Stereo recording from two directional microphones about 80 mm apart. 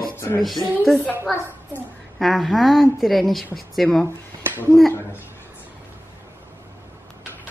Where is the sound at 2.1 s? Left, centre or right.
Centre.